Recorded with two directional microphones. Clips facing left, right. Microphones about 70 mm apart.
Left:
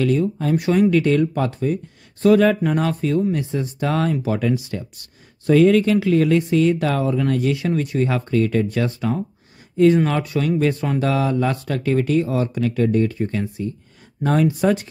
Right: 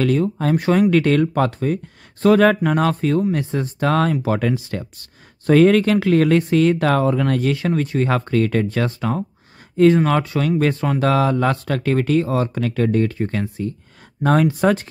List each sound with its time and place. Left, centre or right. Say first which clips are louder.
0.2 s speech: right 1 dB; right
1.3 s speech: right 2 dB; right
2.2 s speech: right 1 dB; right
5.5 s speech: right 1 dB; right
7.6 s speech: right 1 dB; right
8.0 s speech: right 1 dB; right
8.7 s speech: even; right
10.3 s speech: right 1 dB; right
11.0 s speech: right 4 dB; right
14.2 s speech: right 2 dB; right
14.6 s speech: right 1 dB; right